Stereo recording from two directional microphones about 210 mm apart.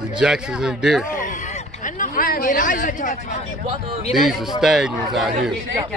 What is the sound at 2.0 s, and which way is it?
Speech, 45° left (ahead or behind).